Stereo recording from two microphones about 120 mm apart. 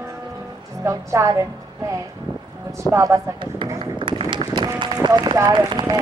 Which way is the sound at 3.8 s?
45° right (ahead or behind).